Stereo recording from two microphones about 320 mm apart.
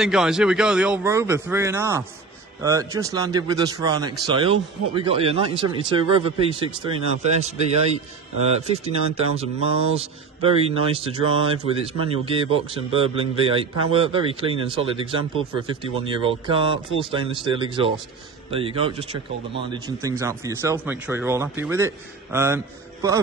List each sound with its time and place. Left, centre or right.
0.0 s a man's voice: centre